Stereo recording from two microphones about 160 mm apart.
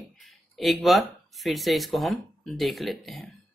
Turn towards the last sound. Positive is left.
turn(degrees=0)  # may be behind; listen again after turning